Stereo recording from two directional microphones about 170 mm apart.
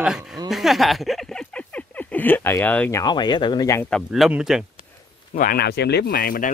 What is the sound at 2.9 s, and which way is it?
Speech, 25° left (ahead or behind).